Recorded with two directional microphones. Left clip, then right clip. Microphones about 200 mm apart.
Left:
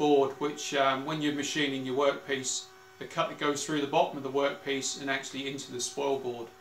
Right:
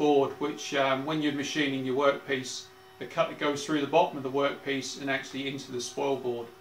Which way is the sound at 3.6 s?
Centre (ahead or behind).